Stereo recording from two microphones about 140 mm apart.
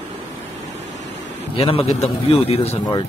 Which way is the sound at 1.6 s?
40° left (ahead or behind).